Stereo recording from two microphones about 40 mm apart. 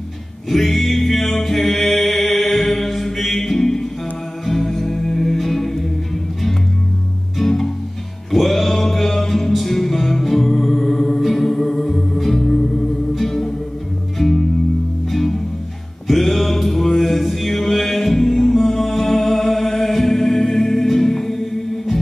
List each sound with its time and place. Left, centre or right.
0.5 s music: centre
7.3 s music: centre
16.1 s mantra: centre